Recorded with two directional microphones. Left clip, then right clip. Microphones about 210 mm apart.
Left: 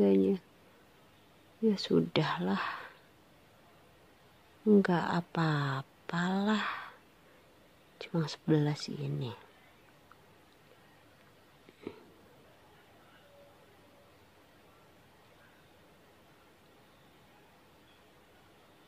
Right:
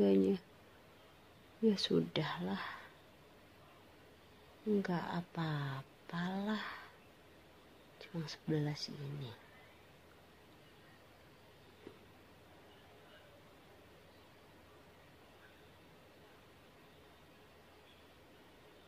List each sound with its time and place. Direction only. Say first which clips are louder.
0.0 s a sound: left 4 dB; 15° left (ahead or behind)
1.7 s speech: left 4 dB; 10° left (ahead or behind)
2.1 s speech: left 8 dB; 25° left (ahead or behind)
4.8 s speech: left 9 dB; 25° left (ahead or behind)
8.0 s speech: left 10 dB; 30° left (ahead or behind)